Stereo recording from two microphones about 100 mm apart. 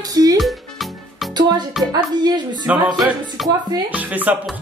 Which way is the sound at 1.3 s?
45° right (ahead or behind).